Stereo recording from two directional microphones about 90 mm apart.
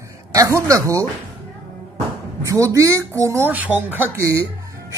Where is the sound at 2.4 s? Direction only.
35° right (ahead or behind).